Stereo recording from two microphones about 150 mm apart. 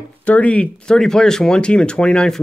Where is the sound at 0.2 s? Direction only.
10° left (ahead or behind).